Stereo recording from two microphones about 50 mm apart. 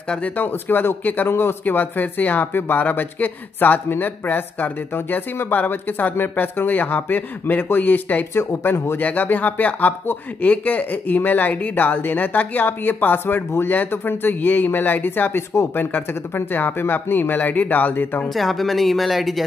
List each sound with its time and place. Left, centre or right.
0.4 s speech: left
8.7 s speech: left
9.0 s speech: left
18.3 s speech: centre